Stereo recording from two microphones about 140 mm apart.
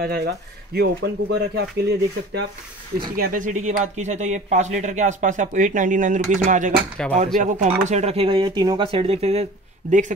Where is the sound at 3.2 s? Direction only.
70° right (ahead or behind).